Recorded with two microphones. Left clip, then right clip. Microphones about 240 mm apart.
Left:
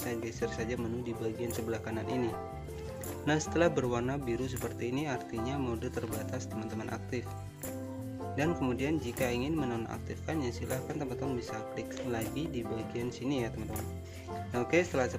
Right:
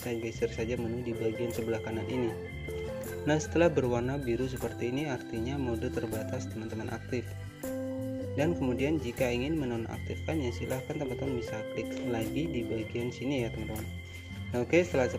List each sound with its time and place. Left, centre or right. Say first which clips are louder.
0.1 s speech: right 5 dB; centre
3.3 s speech: right 2 dB; centre
14.5 s speech: right 3 dB; centre